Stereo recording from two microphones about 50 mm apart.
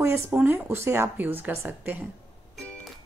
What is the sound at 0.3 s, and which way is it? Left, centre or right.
Speech, right.